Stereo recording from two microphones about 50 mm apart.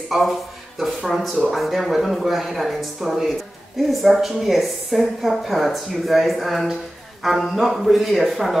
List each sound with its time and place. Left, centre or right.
0.1 s speech: centre